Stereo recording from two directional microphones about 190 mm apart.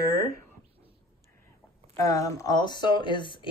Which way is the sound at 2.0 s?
15° left (ahead or behind).